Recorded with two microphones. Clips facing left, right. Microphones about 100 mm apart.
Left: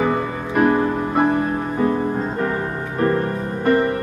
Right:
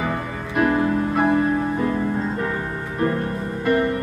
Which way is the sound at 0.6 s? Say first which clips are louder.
Left 2 dB; 35° left (ahead or behind).